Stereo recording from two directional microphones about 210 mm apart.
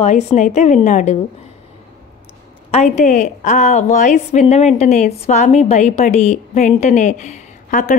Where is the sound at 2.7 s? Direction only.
30° left (ahead or behind).